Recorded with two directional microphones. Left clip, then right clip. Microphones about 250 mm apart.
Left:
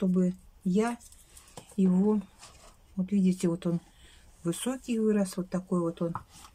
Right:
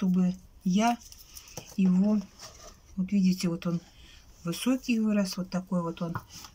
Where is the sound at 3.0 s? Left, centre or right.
Left.